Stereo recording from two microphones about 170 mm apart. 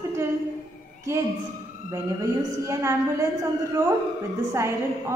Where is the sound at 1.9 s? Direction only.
15° right (ahead or behind).